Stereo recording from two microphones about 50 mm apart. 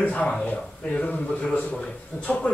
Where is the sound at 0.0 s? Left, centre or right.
Left.